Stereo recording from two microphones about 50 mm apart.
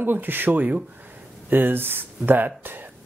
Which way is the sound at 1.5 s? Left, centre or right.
Right.